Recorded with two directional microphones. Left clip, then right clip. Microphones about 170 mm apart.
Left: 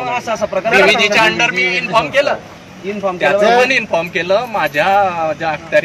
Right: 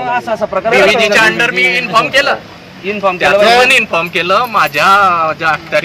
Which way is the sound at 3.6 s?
Centre (ahead or behind).